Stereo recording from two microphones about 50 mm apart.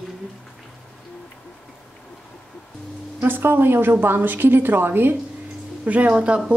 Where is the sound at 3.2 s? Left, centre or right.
Right.